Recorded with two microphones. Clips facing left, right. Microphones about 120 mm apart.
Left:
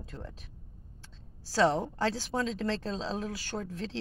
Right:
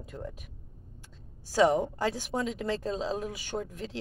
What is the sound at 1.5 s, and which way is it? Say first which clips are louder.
A woman's voice: right 2 dB; 10° right (ahead or behind).